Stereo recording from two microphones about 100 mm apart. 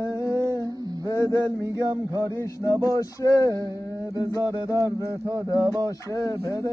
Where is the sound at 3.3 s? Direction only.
35° right (ahead or behind).